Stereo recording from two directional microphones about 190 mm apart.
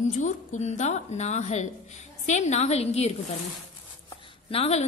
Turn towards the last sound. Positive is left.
turn(degrees=30)  # may be behind; listen again after turning